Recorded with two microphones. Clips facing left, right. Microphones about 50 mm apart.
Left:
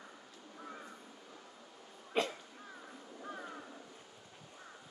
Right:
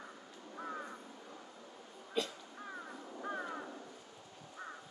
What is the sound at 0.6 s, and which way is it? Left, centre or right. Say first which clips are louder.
Crow: right 6 dB; right.